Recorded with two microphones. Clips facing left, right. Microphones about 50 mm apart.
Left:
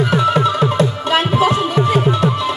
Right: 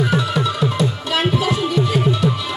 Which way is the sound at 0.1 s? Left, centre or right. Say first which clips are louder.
Left 5 dB; left.